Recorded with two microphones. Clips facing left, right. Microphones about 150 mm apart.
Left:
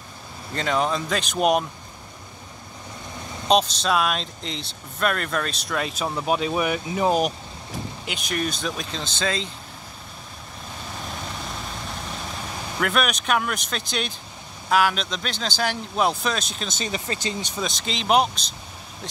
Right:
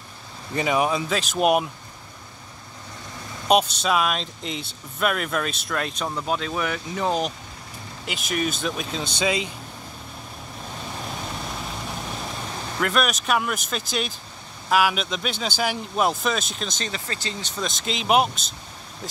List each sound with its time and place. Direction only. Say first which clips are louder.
0.6 s speech: right 1 dB; 10° right (ahead or behind)
3.4 s speech: even; 10° right (ahead or behind); by 7.3 s 10° left (ahead or behind)
8.0 s speech: right 2 dB; centre (ahead or behind)
12.8 s speech: even; centre (ahead or behind)
16.9 s speech: left 4 dB; 15° left (ahead or behind)
17.6 s speech: right 1 dB; centre (ahead or behind)